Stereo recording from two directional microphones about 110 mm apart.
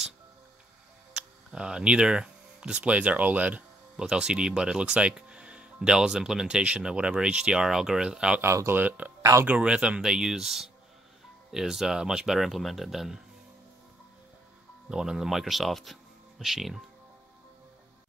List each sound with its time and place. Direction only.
1.1 s speech: 10° right (ahead or behind)
8.4 s speech: 25° right (ahead or behind)
9.2 s speech: 30° right (ahead or behind)
9.5 s speech: 10° right (ahead or behind)
14.9 s speech: 5° right (ahead or behind)